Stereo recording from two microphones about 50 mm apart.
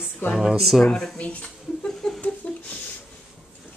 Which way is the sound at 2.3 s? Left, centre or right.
Left.